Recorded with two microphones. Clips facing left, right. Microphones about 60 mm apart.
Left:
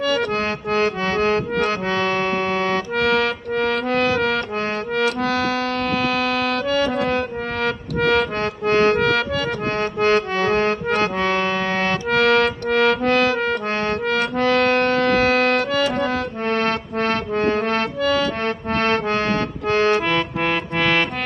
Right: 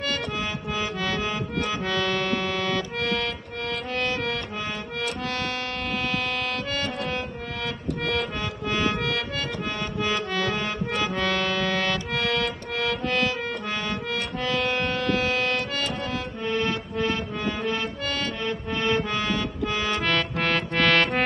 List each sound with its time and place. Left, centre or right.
0.7 s accordion: left
1.9 s music: left
3.0 s music: left
4.9 s accordion: left
7.6 s accordion: left
11.1 s music: left
12.1 s music: left
18.4 s accordion: left
20.1 s accordion: centre